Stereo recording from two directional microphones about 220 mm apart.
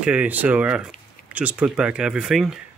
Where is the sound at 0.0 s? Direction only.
5° right (ahead or behind).